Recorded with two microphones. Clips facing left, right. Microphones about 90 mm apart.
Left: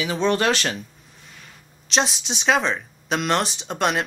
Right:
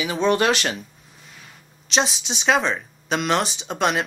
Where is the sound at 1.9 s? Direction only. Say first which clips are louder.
Even; centre (ahead or behind).